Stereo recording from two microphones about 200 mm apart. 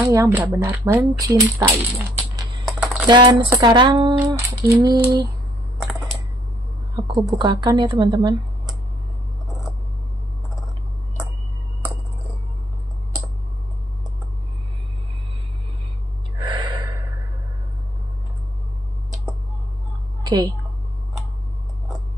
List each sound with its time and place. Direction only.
0.0 s speech: 15° right (ahead or behind)
2.6 s typing: 5° right (ahead or behind)
3.1 s a woman's voice: 20° right (ahead or behind)
5.8 s computer keyboard: centre (ahead or behind)
7.3 s a woman's voice: 20° right (ahead or behind)
16.3 s gasp: 20° right (ahead or behind)
20.2 s a woman's voice: 20° right (ahead or behind)